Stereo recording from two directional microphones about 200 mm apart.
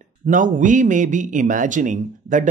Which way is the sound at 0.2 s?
40° right (ahead or behind).